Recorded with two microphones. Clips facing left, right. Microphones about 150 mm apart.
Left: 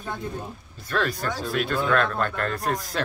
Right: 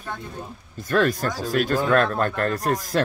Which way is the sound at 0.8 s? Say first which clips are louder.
Right 5 dB; 45° right (ahead or behind).